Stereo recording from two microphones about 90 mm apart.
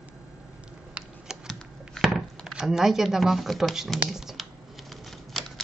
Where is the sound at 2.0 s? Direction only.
5° right (ahead or behind).